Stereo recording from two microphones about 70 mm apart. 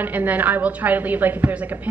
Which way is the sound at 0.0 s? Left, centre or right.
Right.